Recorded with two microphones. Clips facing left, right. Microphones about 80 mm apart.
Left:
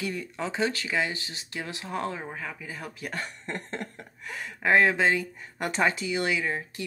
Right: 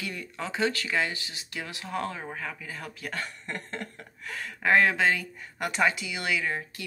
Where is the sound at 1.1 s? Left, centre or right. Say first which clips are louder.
Left 1 dB; left.